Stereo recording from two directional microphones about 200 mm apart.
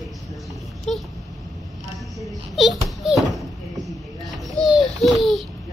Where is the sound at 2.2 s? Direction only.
Centre (ahead or behind).